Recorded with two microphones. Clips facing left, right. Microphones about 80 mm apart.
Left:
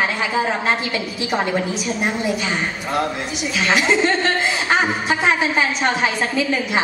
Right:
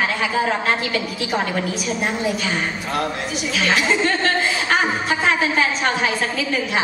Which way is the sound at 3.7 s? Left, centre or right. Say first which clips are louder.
Left 2 dB; left.